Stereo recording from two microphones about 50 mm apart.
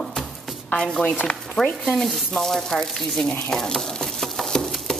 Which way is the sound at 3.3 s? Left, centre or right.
Centre.